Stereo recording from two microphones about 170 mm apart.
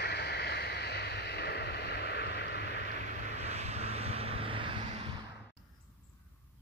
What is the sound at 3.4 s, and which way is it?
Vehicle, 40° right (ahead or behind).